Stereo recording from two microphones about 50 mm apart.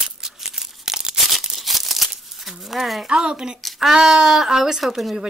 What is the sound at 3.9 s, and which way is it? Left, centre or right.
Speech, centre.